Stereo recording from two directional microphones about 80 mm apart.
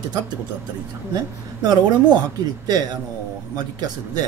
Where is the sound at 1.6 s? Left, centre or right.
Right.